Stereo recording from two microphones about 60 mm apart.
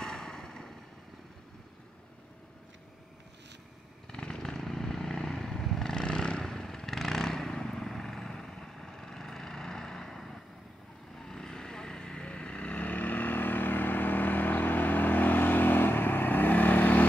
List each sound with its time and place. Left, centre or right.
0.0 s vehicle: centre
4.1 s vehicle: centre; by 17.0 s left